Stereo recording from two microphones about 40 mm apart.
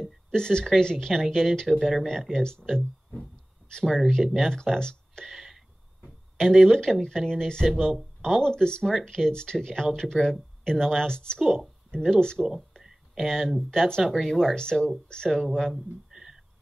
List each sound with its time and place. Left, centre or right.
0.0 s speech: centre
1.7 s a woman's voice: centre
2.3 s speech: centre
4.4 s speech: centre
5.2 s a sound: centre
6.3 s speech: centre
11.3 s a woman's voice: centre
11.9 s speech: centre
14.0 s a woman's voice: centre
14.4 s a woman's voice: centre
16.1 s a sound: centre